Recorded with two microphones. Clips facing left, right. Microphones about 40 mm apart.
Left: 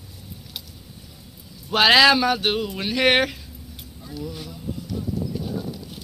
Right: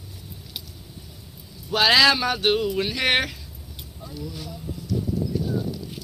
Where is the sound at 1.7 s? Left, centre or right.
Left.